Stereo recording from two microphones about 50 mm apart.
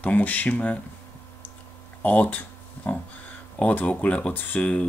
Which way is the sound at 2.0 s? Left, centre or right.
Left.